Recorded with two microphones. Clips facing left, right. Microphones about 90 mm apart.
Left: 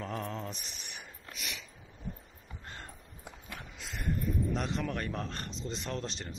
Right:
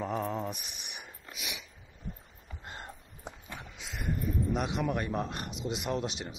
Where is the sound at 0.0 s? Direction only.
10° right (ahead or behind).